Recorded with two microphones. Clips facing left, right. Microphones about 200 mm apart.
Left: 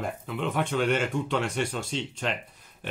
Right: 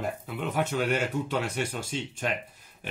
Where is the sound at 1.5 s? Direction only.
10° right (ahead or behind).